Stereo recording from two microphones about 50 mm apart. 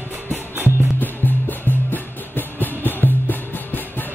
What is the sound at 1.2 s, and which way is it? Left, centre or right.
Music, left.